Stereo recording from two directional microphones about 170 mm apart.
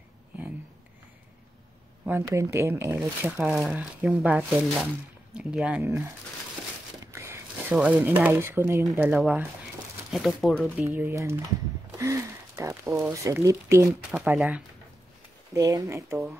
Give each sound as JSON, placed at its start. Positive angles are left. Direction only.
{"t": 2.0, "sound": "speech", "side_deg": -15}
{"t": 3.3, "sound": "speech", "side_deg": 0}
{"t": 7.1, "sound": "a sound", "side_deg": -15}
{"t": 7.7, "sound": "speech", "side_deg": -10}
{"t": 10.9, "sound": "speech", "side_deg": -10}
{"t": 13.8, "sound": "speech", "side_deg": -5}
{"t": 15.5, "sound": "speech", "side_deg": -20}